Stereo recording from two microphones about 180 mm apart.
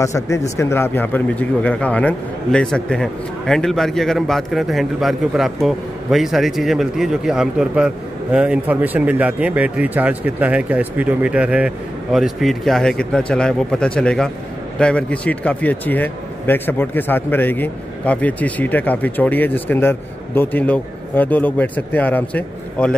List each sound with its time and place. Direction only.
0.0 s speech: 15° left (ahead or behind)